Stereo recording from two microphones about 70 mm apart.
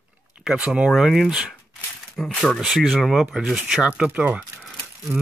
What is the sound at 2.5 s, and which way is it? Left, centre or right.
Speech, centre.